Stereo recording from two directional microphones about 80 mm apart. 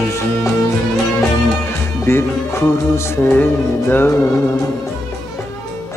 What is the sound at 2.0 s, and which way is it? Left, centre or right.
A man's voice, left.